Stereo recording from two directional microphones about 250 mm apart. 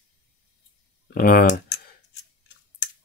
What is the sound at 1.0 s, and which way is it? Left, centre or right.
Speech, left.